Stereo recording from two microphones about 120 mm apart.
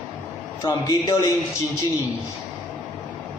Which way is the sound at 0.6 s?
25° left (ahead or behind).